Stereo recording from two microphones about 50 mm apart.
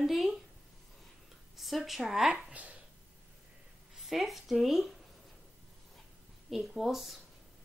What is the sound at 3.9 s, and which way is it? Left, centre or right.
Speech, centre.